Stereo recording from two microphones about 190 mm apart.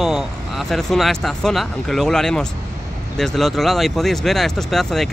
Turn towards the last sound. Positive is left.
turn(degrees=0)  # may be behind; listen again after turning